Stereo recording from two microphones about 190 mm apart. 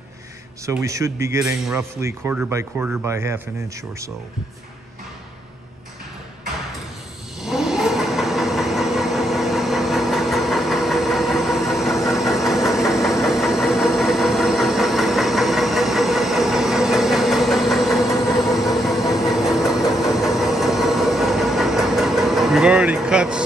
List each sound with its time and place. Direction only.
0.7 s speech: 15° right (ahead or behind)
7.4 s vehicle: centre (ahead or behind)